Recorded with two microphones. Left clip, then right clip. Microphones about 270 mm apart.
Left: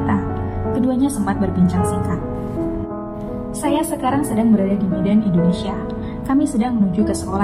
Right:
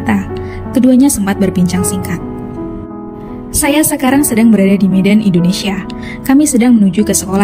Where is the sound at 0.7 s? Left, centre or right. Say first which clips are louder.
Right 10 dB; right.